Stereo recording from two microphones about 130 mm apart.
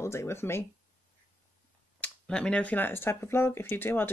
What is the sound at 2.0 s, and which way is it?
Speech, 5° left (ahead or behind).